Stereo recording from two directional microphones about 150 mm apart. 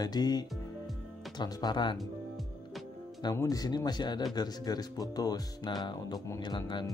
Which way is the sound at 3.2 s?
25° left (ahead or behind).